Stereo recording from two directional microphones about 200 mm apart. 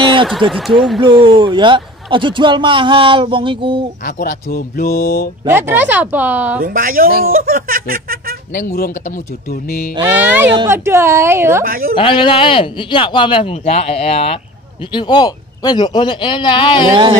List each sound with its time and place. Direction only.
0.5 s speech: centre (ahead or behind)
1.0 s speech: 25° right (ahead or behind)
4.0 s speech: 45° left (ahead or behind)
5.5 s speech: 10° right (ahead or behind)
6.6 s speech: 45° right (ahead or behind)
9.5 s speech: 45° left (ahead or behind)
10.0 s speech: 10° right (ahead or behind)
11.6 s speech: 45° right (ahead or behind)
12.0 s a man's voice: 25° left (ahead or behind)
16.9 s speech: 20° right (ahead or behind)